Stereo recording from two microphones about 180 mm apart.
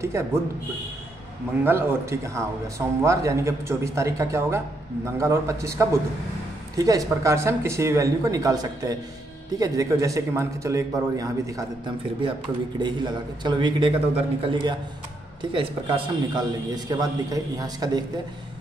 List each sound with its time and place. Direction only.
0.1 s speech: 15° right (ahead or behind)
1.6 s a man's voice: 10° right (ahead or behind)